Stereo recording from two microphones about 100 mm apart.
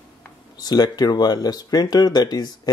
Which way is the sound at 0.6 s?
40° left (ahead or behind).